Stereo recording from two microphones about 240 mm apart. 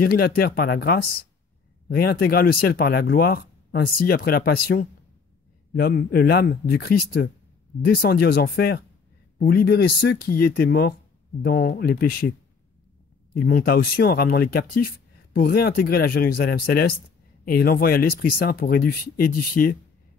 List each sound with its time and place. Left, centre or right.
0.0 s speech: left
13.3 s speech: left